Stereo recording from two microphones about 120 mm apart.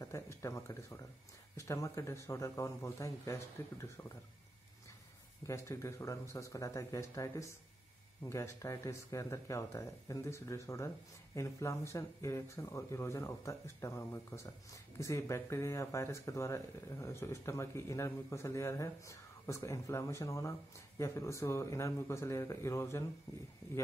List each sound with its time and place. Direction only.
0.0 s a sound: 25° left (ahead or behind)
1.7 s speech: 25° left (ahead or behind)
5.5 s speech: 25° left (ahead or behind)